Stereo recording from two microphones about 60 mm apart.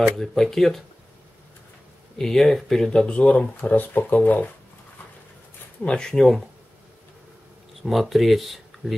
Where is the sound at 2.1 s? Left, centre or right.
Centre; by 4.5 s left.